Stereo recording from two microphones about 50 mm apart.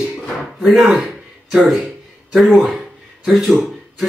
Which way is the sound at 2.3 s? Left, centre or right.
Centre.